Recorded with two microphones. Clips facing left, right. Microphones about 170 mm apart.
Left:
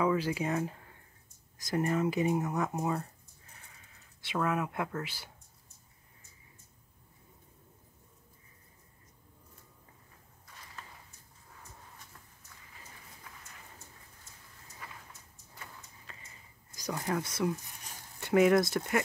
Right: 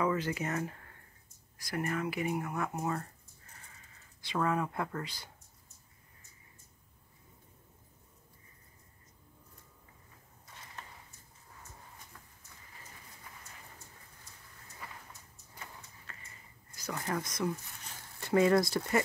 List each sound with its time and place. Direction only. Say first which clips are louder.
0.0 s speech: left 2 dB; 10° left (ahead or behind)
4.4 s speech: even; 5° left (ahead or behind)
16.1 s a sound: left 1 dB; 15° left (ahead or behind)
16.7 s speech: left 2 dB; 15° left (ahead or behind)